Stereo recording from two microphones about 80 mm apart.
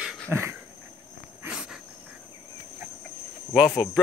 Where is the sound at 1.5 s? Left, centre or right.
Centre.